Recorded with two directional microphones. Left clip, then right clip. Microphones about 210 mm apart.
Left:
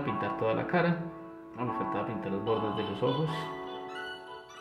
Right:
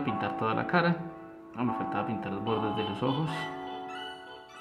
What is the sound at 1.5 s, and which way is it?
Speech, 20° right (ahead or behind).